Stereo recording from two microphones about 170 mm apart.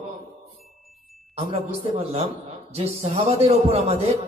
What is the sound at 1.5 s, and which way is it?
A man's voice, 35° right (ahead or behind).